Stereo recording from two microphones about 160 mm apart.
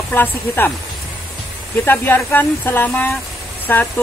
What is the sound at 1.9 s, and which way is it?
Speech, 10° left (ahead or behind).